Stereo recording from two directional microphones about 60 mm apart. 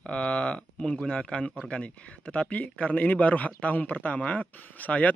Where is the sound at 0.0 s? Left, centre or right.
Centre.